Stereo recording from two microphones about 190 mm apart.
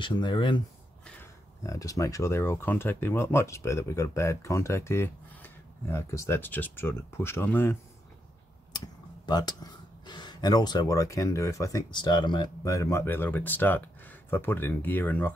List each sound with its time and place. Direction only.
0.0 s speech: 25° left (ahead or behind)
1.6 s speech: 15° left (ahead or behind)
8.7 s speech: 20° left (ahead or behind)